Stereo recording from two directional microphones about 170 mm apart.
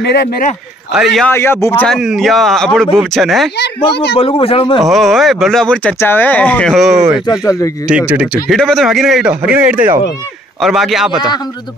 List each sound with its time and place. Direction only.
0.0 s speech: 70° left (ahead or behind)
0.9 s speech: centre (ahead or behind)
1.3 s a man's voice: 15° left (ahead or behind)
1.9 s speech: centre (ahead or behind)
4.2 s speech: 35° left (ahead or behind)
4.7 s speech: centre (ahead or behind)
7.2 s a man's voice: 20° left (ahead or behind)
7.9 s speech: 10° right (ahead or behind)
8.5 s speech: 5° left (ahead or behind)